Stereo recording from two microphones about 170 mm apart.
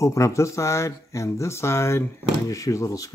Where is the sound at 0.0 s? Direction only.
15° left (ahead or behind).